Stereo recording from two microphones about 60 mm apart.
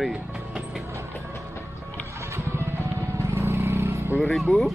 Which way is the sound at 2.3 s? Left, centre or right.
Right.